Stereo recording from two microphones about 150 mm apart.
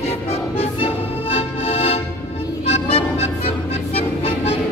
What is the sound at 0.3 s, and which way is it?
Music, 45° left (ahead or behind).